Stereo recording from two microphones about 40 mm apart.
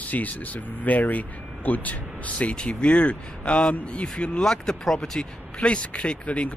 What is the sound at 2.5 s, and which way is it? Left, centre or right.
Speech, left.